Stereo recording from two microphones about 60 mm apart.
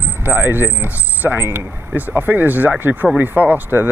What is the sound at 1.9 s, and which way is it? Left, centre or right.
Speech, right.